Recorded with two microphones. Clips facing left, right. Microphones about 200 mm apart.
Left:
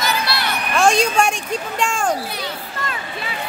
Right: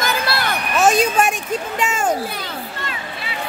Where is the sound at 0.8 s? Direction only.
5° right (ahead or behind).